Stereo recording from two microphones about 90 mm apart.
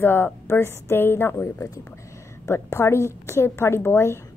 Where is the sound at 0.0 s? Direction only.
25° left (ahead or behind).